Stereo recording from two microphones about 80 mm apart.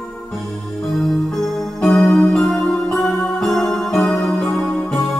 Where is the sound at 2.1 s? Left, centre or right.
Centre.